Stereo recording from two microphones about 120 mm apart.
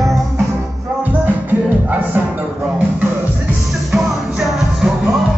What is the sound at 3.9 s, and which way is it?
Music, centre (ahead or behind).